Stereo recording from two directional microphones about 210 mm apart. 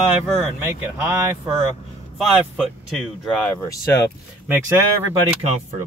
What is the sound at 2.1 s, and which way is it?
Speech, centre (ahead or behind).